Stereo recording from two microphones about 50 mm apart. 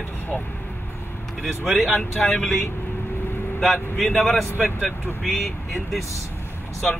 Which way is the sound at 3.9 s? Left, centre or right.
Centre.